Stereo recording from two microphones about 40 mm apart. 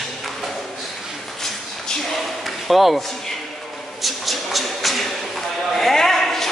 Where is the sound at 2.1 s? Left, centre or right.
Centre.